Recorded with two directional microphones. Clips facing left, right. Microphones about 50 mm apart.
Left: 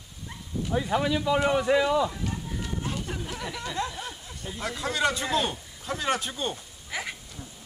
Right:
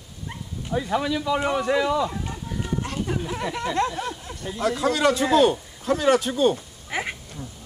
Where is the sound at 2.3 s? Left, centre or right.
Centre.